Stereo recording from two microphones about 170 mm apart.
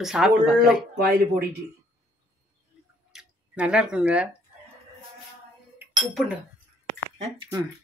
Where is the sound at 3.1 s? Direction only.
5° right (ahead or behind).